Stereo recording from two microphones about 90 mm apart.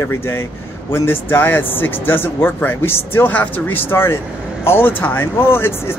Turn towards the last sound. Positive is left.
turn(degrees=25)  # may be behind; listen again after turning